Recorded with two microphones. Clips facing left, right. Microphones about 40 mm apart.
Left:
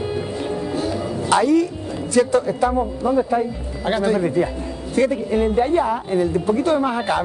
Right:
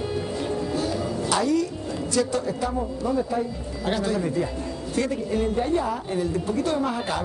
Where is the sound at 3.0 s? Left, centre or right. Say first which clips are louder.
Left 6 dB; left.